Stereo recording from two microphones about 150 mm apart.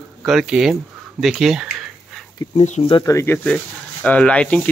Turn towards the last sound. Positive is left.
turn(degrees=5)  # may be behind; listen again after turning